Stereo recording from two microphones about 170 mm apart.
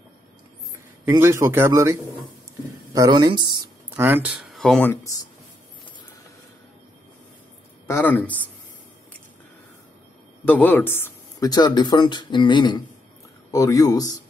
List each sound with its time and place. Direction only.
1.0 s speech: 15° right (ahead or behind)
3.9 s speech: 10° right (ahead or behind)
4.6 s speech: 5° left (ahead or behind)
7.8 s speech: 10° left (ahead or behind)
10.4 s speech: 10° left (ahead or behind)